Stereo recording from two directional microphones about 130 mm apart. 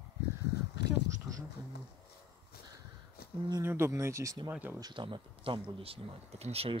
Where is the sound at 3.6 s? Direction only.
20° right (ahead or behind).